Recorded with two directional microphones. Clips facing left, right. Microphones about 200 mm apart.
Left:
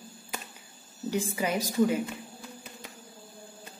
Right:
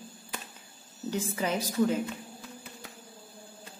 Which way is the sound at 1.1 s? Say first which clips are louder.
Left 1 dB; 10° left (ahead or behind).